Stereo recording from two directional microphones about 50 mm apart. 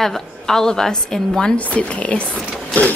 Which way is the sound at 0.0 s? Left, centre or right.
Centre.